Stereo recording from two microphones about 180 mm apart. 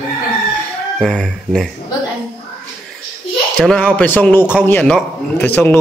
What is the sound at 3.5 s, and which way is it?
A man's voice, 5° left (ahead or behind).